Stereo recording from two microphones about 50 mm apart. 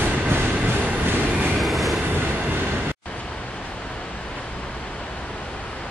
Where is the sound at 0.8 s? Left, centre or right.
Right.